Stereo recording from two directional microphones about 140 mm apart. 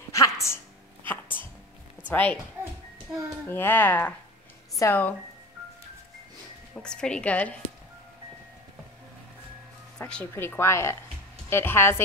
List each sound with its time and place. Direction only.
0.1 s a sound: 20° left (ahead or behind)
2.0 s a woman's voice: 10° left (ahead or behind)
3.4 s a woman's voice: 15° left (ahead or behind)
6.7 s a woman's voice: 5° left (ahead or behind)
9.9 s music: 5° left (ahead or behind)
10.3 s a woman's voice: 15° left (ahead or behind)